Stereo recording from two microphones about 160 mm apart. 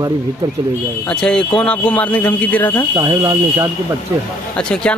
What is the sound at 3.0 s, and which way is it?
Speech, 20° right (ahead or behind).